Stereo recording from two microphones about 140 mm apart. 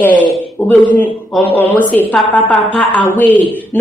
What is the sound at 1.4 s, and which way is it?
A man's voice, 15° left (ahead or behind).